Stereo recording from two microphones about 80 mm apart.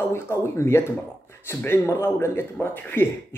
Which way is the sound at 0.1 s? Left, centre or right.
Left.